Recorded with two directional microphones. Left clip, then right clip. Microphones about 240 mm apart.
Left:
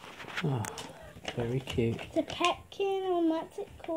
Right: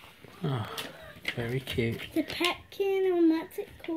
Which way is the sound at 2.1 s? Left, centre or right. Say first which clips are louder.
Even; left.